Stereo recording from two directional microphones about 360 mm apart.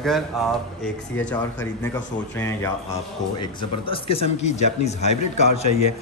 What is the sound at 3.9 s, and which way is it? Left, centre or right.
Speech, centre.